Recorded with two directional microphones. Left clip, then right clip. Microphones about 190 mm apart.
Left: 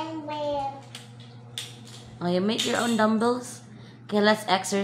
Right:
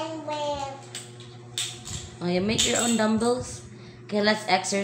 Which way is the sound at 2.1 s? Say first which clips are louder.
Left 1 dB; 30° left (ahead or behind).